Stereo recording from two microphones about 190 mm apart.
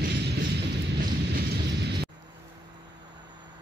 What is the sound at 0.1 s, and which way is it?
Music, 65° right (ahead or behind).